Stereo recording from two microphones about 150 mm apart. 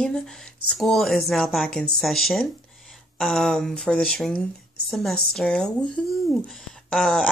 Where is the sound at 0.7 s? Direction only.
Centre (ahead or behind).